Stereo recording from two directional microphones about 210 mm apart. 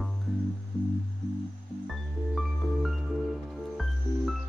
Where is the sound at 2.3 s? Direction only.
Centre (ahead or behind).